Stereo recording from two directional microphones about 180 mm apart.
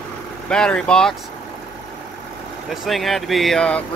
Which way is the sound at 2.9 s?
Centre (ahead or behind).